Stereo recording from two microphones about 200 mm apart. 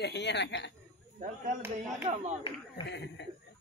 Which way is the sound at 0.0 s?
60° left (ahead or behind).